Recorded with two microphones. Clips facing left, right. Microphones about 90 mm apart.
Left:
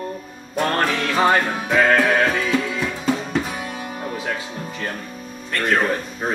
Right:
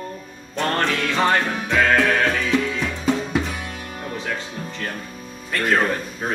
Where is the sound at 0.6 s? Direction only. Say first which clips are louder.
Left 1 dB; 10° left (ahead or behind).